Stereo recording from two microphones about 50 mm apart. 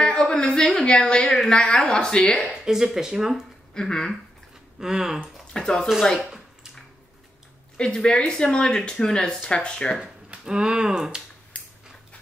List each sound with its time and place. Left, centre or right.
0.0 s a sound: centre
0.9 s speech: centre
2.5 s speech: centre
3.7 s speech: centre
4.7 s speech: centre
5.5 s speech: centre
7.7 s speech: centre
10.3 s speech: centre